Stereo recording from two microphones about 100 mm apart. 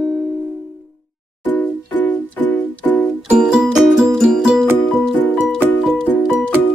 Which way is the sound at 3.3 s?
5° right (ahead or behind).